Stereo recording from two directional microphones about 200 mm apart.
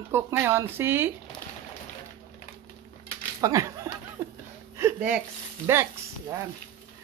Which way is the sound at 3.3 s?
15° right (ahead or behind).